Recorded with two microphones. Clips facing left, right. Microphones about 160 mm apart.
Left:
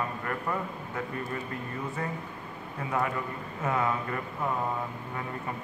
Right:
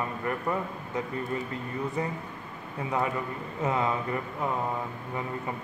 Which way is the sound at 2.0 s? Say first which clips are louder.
Right 3 dB; 20° right (ahead or behind).